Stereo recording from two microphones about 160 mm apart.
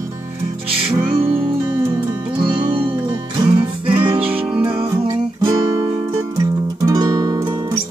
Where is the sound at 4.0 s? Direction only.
35° right (ahead or behind).